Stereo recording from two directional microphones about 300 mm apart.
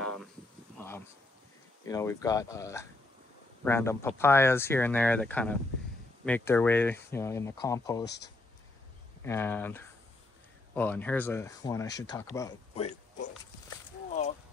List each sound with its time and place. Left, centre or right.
0.7 s a sound: centre
1.9 s speech: centre
8.0 s speech: left
9.2 s speech: centre